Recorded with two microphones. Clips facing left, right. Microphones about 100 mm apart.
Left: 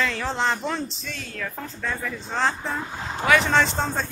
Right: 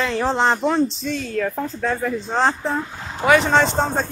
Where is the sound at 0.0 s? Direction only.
30° right (ahead or behind).